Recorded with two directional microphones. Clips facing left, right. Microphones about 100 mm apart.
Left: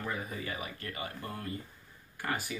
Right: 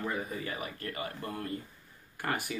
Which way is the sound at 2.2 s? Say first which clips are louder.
Right 2 dB; 60° right (ahead or behind).